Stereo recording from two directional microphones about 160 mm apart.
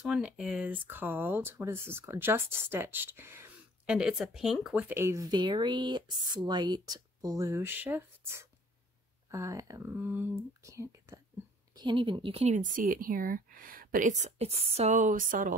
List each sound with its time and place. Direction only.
0.0 s speech: 5° right (ahead or behind)
11.7 s speech: 30° right (ahead or behind); by 15.5 s 55° right (ahead or behind)